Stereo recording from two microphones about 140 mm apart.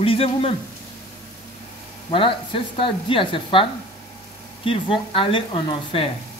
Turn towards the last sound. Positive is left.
turn(degrees=40)  # may be behind; listen again after turning